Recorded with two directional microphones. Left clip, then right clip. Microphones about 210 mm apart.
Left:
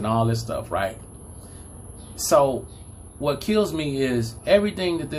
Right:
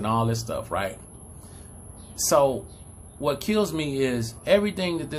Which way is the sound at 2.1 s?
10° right (ahead or behind).